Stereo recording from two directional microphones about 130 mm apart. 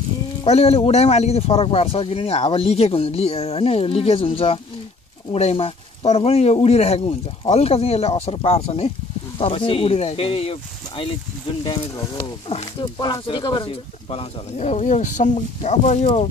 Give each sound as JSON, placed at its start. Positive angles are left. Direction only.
{"t": 0.4, "sound": "speech", "side_deg": 50}